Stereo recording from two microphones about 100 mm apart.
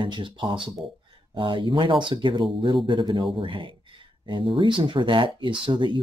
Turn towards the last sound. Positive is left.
turn(degrees=-50)  # may be behind; listen again after turning